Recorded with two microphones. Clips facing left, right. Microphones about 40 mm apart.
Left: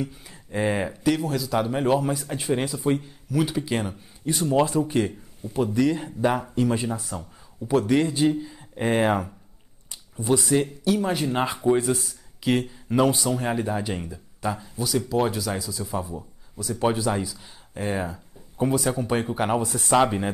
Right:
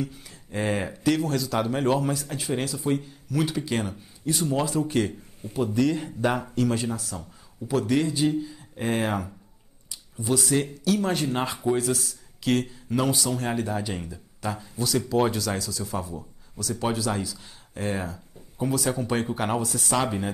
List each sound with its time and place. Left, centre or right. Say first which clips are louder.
0.0 s speech: left 1 dB; centre
3.3 s speech: left 2 dB; centre
6.5 s speech: left 1 dB; left
9.8 s a sound: left 4 dB; left
11.1 s speech: left 2 dB; centre
15.3 s speech: even; centre
17.4 s speech: left 1 dB; centre
19.9 s speech: left 6 dB; centre